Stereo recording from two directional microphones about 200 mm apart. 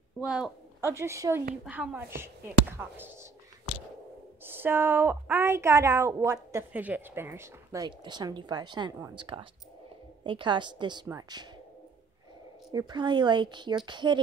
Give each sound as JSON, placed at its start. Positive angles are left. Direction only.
{"t": 0.2, "sound": "a woman's voice", "side_deg": -5}
{"t": 4.5, "sound": "a woman's voice", "side_deg": -10}
{"t": 12.7, "sound": "a woman's voice", "side_deg": -20}